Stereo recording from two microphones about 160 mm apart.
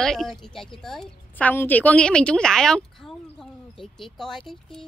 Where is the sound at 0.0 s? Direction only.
Centre (ahead or behind).